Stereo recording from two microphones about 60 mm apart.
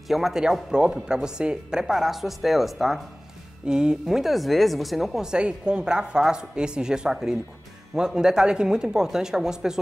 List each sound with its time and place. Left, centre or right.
0.1 s a woman's voice: centre
3.6 s speech: centre